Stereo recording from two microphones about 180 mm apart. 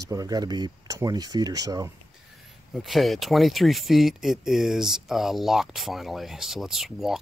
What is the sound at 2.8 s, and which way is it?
Speech, centre (ahead or behind).